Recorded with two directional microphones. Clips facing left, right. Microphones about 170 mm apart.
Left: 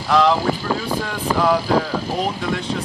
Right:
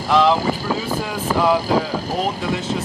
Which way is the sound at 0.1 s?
Centre (ahead or behind).